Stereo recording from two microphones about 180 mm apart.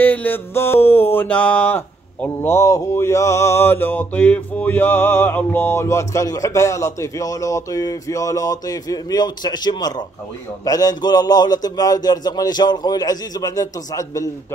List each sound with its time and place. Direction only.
0.0 s mantra: 10° left (ahead or behind)
10.6 s a man's voice: 20° left (ahead or behind)